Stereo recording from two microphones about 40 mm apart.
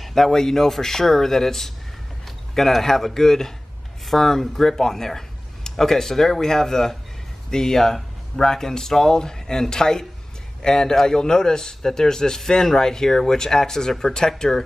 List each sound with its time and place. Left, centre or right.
0.0 s speech: centre